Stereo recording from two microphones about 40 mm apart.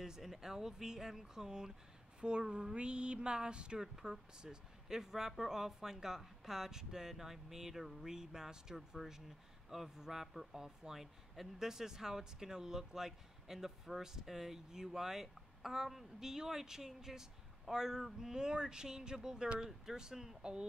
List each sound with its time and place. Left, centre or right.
0.0 s a man's voice: centre
2.5 s a sound: right
3.8 s a man's voice: centre